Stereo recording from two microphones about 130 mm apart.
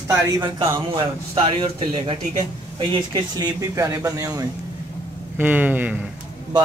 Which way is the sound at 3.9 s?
25° right (ahead or behind).